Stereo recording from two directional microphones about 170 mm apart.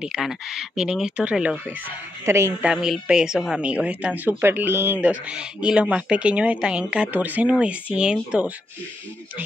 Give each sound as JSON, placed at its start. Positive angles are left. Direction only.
{"t": 0.0, "sound": "speech", "side_deg": -5}
{"t": 2.7, "sound": "speech", "side_deg": -5}